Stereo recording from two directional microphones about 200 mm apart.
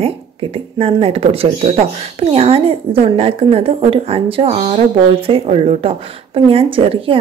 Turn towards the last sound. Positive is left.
turn(degrees=-25)  # may be behind; listen again after turning